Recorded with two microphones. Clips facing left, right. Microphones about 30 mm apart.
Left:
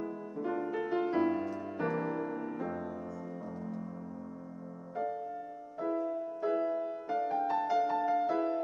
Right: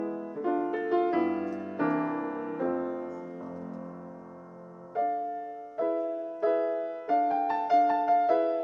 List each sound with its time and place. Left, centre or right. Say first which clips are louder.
0.0 s music: right 5 dB; centre
4.9 s music: right 7 dB; centre